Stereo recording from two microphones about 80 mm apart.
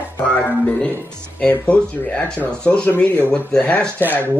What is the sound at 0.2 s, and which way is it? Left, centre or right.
Music, centre.